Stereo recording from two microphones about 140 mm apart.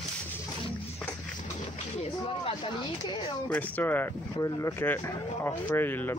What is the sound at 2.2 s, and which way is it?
Speech, 40° left (ahead or behind).